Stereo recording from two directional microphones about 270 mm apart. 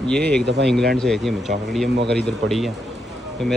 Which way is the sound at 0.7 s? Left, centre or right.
Centre.